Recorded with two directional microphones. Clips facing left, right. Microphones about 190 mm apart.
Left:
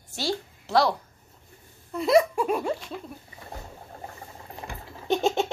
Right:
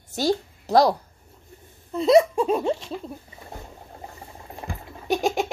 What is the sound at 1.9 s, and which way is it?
Laughter, 25° right (ahead or behind).